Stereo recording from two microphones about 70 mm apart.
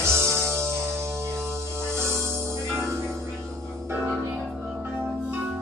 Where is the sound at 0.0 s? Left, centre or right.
Right.